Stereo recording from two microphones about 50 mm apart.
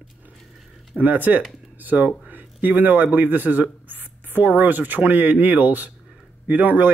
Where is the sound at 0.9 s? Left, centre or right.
Right.